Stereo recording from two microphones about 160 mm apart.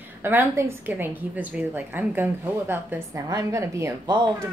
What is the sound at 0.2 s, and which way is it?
A woman's voice, 15° right (ahead or behind).